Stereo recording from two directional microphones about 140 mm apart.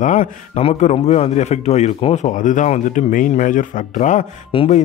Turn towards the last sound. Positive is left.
turn(degrees=35)  # may be behind; listen again after turning